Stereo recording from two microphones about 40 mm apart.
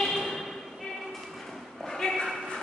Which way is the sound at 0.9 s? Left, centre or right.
Centre.